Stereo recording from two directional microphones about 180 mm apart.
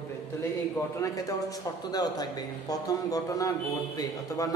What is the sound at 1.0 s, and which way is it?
A man's voice, 20° left (ahead or behind).